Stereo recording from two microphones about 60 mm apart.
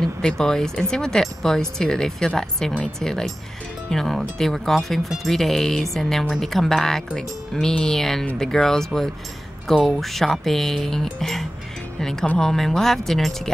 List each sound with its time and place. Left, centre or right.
0.0 s speech: centre